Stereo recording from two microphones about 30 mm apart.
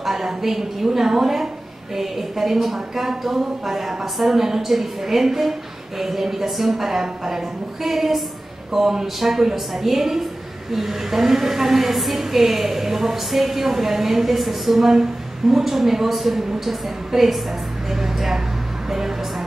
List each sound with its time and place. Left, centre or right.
0.0 s a woman's voice: centre